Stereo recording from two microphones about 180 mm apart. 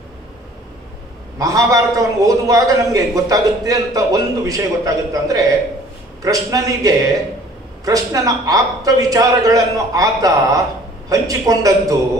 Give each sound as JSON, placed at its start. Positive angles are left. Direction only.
{"t": 1.4, "sound": "a man's voice", "side_deg": -20}